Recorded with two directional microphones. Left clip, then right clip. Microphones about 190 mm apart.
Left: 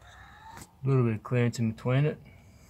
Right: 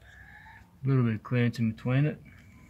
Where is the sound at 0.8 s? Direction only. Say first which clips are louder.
Left 2 dB; 10° left (ahead or behind).